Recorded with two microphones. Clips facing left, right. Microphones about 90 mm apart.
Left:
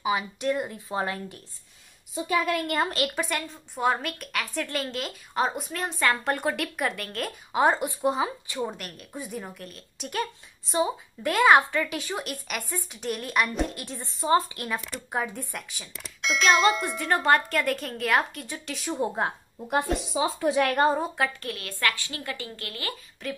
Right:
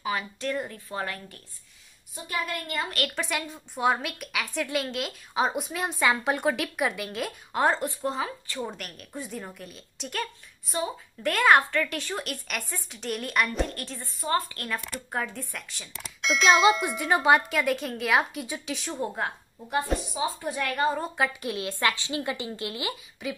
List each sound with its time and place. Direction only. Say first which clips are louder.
0.0 s a woman's voice: left 4 dB; 15° left (ahead or behind)
2.4 s a woman's voice: left 6 dB; 80° left
3.2 s a woman's voice: left 1 dB; centre (ahead or behind); by 8.7 s 15° left (ahead or behind)
8.7 s a woman's voice: even; centre (ahead or behind)
10.2 s a woman's voice: left 1 dB; 20° left (ahead or behind)
11.2 s a woman's voice: left 2 dB; 5° left (ahead or behind)
13.8 s a woman's voice: left 5 dB; 20° left (ahead or behind)
14.8 s a woman's voice: left 2 dB; 5° left (ahead or behind)
19.7 s a woman's voice: left 2 dB; 85° left
21.4 s speech: right 3 dB; 20° right (ahead or behind)